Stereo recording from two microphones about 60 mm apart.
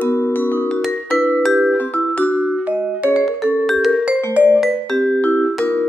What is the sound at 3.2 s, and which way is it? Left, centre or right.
Music, centre.